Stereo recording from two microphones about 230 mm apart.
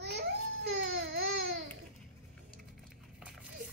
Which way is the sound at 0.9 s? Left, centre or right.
Right.